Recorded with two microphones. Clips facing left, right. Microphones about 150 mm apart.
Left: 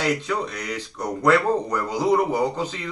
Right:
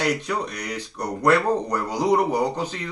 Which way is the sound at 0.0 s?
15° right (ahead or behind).